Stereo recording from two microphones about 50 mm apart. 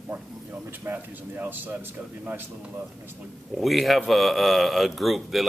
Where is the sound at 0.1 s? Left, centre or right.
Right.